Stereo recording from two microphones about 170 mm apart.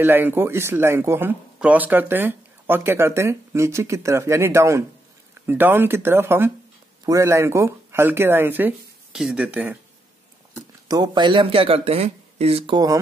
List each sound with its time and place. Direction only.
0.0 s speech: 10° right (ahead or behind)
10.9 s speech: 25° right (ahead or behind)